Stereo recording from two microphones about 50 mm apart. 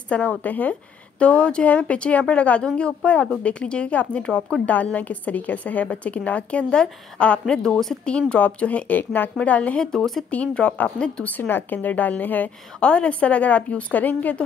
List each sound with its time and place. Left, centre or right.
0.1 s a woman's voice: left
1.2 s a woman's voice: left
4.9 s a woman's voice: left; by 8.0 s centre
8.0 s a woman's voice: left
11.2 s a woman's voice: left
12.8 s a woman's voice: left